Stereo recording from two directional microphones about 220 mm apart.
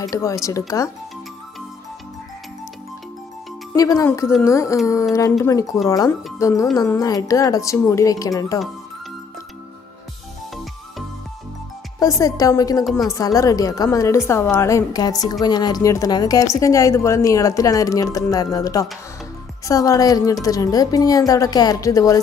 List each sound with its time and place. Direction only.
0.0 s a woman's voice: 15° left (ahead or behind)
3.7 s a woman's voice: 15° left (ahead or behind)
10.5 s music: centre (ahead or behind)
12.0 s a woman's voice: 15° left (ahead or behind)